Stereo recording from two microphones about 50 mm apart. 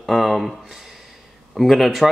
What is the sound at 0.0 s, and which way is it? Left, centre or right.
Speech, centre.